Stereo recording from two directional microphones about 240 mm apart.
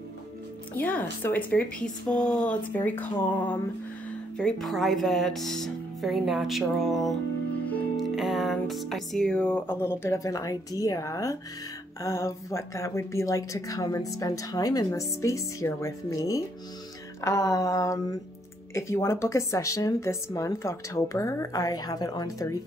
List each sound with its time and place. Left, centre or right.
0.7 s speech: centre
7.7 s music: centre
12.0 s speech: centre